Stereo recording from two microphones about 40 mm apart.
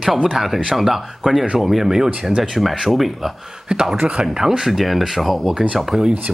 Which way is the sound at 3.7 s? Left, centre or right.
Right.